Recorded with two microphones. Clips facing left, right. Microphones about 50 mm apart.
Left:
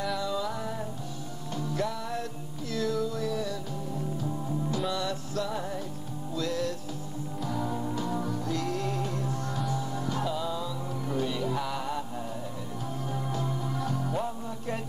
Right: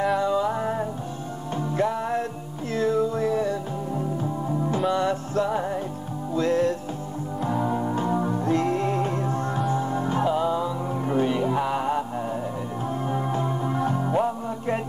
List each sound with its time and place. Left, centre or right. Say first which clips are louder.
0.2 s music: right 8 dB; right
13.0 s music: right 6 dB; right